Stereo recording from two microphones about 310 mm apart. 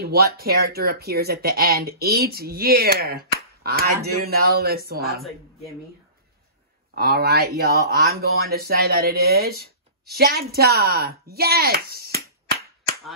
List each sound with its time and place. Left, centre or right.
0.0 s speech: right
7.0 s speech: right